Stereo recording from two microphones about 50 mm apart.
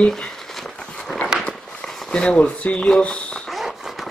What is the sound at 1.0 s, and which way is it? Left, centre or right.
Dog, centre.